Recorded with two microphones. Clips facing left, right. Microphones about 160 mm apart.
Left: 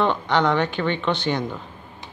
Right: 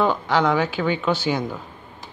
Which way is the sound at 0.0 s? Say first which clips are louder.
Right 1 dB; 5° right (ahead or behind).